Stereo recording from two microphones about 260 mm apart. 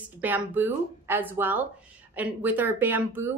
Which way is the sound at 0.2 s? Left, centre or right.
Centre.